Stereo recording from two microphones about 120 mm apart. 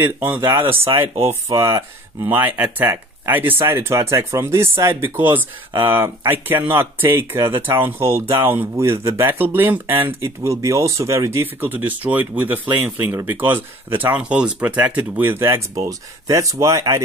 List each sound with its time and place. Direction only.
0.0 s speech: 15° right (ahead or behind)